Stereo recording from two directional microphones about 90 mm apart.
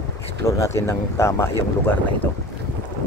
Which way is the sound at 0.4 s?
30° left (ahead or behind).